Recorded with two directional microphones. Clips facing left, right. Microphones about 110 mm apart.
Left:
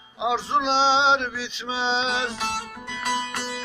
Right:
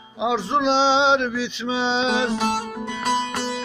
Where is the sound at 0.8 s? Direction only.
35° left (ahead or behind).